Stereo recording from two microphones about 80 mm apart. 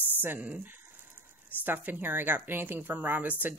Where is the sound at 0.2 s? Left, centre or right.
Right.